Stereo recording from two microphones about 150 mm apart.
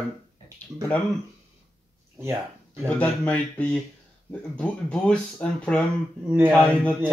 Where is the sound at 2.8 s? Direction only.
10° left (ahead or behind).